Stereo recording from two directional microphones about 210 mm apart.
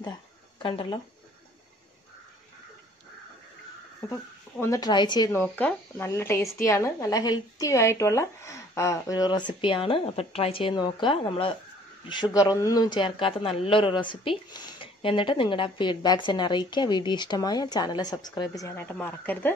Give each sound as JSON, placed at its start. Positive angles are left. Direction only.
{"t": 0.6, "sound": "speech", "side_deg": 25}
{"t": 4.1, "sound": "speech", "side_deg": 15}